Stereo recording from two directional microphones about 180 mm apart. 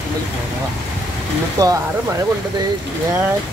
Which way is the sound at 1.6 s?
20° right (ahead or behind).